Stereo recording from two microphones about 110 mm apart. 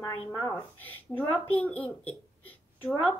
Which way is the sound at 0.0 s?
25° left (ahead or behind).